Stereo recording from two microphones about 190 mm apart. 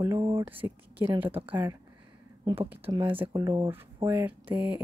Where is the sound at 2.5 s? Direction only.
10° right (ahead or behind).